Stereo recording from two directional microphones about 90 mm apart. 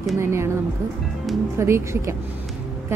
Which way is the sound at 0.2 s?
30° right (ahead or behind).